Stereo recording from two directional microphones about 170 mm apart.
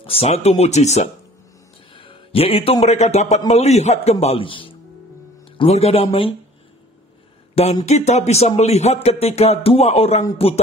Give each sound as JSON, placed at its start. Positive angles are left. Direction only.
{"t": 0.0, "sound": "a man's voice", "side_deg": 35}
{"t": 7.8, "sound": "a man's voice", "side_deg": 40}